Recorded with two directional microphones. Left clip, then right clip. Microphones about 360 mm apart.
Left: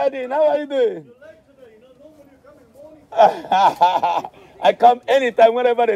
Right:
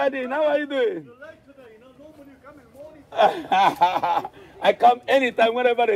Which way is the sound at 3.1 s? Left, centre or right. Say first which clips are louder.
Left 5 dB; left.